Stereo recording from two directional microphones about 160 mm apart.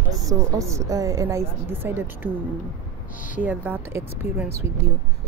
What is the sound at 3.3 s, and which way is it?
Speech, 10° right (ahead or behind).